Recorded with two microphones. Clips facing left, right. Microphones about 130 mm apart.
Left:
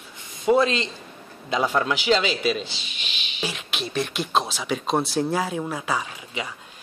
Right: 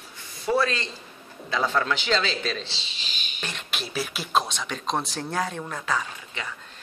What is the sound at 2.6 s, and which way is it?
Speech, 30° right (ahead or behind).